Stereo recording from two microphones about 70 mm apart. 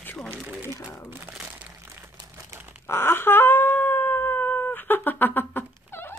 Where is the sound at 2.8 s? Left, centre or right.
Left.